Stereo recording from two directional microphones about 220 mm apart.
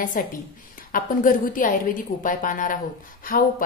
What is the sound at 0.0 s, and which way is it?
Speech, 40° left (ahead or behind).